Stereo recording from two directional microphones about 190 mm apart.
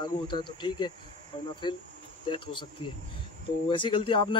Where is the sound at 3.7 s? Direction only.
25° left (ahead or behind).